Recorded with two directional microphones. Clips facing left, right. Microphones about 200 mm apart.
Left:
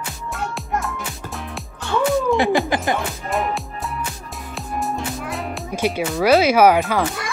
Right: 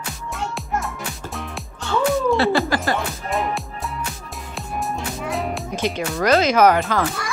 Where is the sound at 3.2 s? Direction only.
Centre (ahead or behind).